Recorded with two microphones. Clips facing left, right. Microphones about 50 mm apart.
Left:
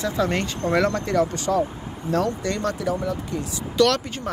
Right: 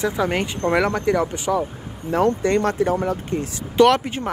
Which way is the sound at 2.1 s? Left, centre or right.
Right.